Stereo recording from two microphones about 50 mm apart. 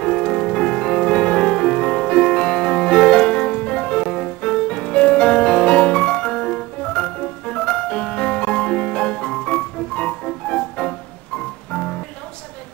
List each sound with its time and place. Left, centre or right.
0.0 s music: centre